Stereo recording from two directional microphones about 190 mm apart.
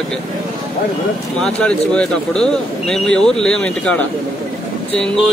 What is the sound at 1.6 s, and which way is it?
Speech, 5° left (ahead or behind).